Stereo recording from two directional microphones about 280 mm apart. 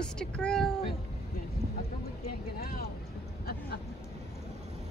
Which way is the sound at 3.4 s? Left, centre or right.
Left.